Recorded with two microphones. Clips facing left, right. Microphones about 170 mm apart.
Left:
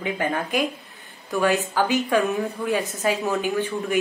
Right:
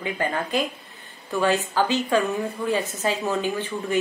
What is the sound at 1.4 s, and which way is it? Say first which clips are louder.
Speech: even; 15° left (ahead or behind).